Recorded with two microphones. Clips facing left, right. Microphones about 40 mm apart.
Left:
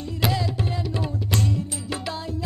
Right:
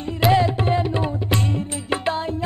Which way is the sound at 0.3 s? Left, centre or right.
Right.